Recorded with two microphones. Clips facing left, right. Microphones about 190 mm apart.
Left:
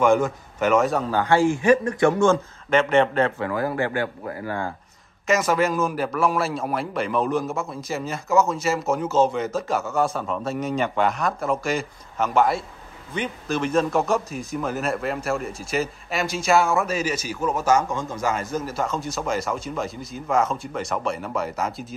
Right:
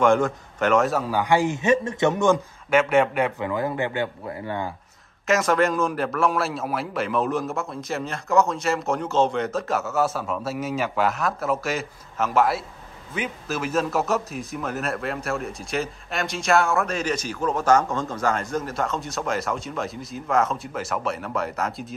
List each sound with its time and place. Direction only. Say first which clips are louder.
0.0 s a man's voice: even; 5° left (ahead or behind); by 4.6 s 25° right (ahead or behind)
5.2 s a man's voice: even; centre (ahead or behind)